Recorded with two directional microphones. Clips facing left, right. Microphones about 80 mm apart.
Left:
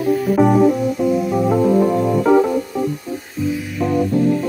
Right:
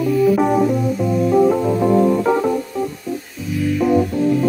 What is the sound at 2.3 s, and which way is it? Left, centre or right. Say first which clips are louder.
Music: left 5 dB; centre.